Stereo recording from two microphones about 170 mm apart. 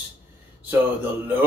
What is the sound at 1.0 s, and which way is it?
Speech, 10° right (ahead or behind).